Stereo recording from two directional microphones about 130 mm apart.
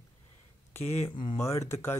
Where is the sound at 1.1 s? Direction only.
40° left (ahead or behind).